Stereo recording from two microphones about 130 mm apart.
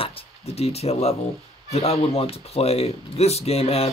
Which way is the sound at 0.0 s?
50° left (ahead or behind).